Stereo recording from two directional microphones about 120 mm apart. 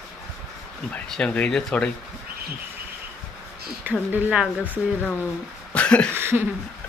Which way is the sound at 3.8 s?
15° right (ahead or behind).